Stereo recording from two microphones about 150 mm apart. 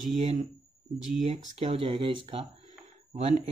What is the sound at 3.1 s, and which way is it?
Speech, 50° right (ahead or behind).